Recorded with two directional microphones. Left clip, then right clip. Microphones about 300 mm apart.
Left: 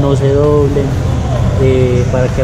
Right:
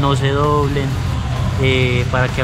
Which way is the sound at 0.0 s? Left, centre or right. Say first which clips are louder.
Left 5 dB; right.